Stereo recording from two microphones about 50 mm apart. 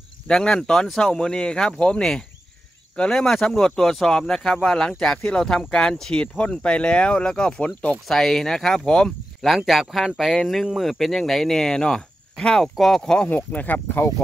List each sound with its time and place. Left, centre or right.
0.3 s speech: centre
8.1 s speech: centre
9.7 s speech: centre
13.3 s speech: left